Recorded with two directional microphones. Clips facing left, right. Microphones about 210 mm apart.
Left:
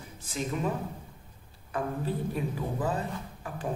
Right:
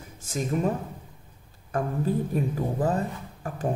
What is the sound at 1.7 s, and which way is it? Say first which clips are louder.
A man's voice: right 5 dB; 45° right (ahead or behind).